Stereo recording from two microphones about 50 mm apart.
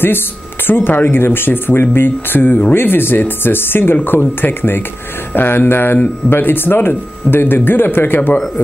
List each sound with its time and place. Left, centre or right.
0.8 s speech: left